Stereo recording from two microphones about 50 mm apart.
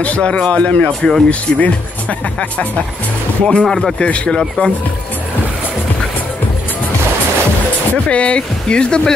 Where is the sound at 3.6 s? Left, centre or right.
Centre.